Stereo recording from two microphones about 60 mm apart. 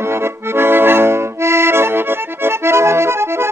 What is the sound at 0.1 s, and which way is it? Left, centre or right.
Accordion, right.